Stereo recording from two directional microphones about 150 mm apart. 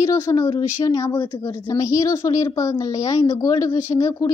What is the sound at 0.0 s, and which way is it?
A woman's voice, 20° left (ahead or behind).